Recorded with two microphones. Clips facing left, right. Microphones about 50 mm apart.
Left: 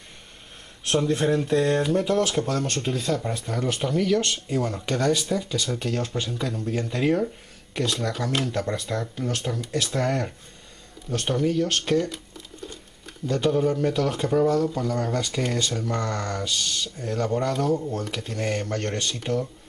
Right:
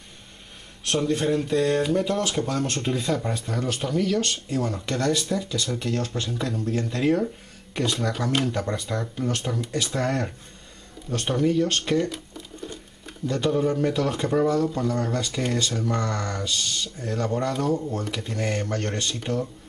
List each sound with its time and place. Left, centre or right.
1.5 s speech: left
2.0 s speech: centre
6.3 s speech: centre
6.6 s speech: centre
7.7 s speech: centre
12.0 s a sound: centre
13.3 s speech: centre